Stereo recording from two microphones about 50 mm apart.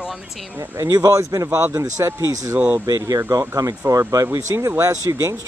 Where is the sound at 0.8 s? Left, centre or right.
Right.